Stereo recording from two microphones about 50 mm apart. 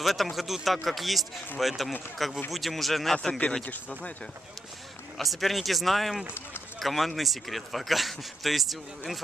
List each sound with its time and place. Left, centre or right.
0.0 s speech: centre
3.6 s speech: left
5.1 s speech: centre